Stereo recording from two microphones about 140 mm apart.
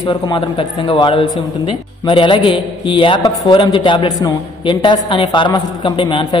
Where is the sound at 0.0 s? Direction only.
35° left (ahead or behind).